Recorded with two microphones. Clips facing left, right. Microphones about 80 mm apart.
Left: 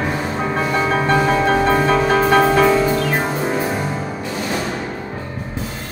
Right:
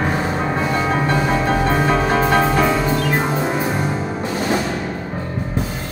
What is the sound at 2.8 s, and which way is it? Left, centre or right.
Music, right.